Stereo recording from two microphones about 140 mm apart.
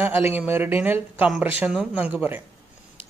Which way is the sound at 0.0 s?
15° right (ahead or behind).